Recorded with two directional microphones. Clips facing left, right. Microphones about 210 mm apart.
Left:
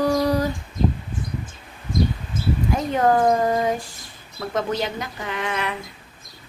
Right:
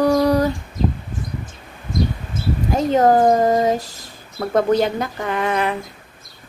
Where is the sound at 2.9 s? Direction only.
40° right (ahead or behind).